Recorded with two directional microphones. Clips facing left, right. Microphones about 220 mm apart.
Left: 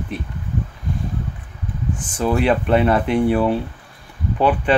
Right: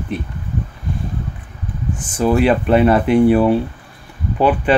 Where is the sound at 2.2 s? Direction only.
5° right (ahead or behind).